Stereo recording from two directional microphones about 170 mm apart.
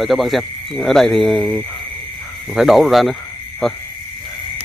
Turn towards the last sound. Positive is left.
turn(degrees=5)  # may be behind; listen again after turning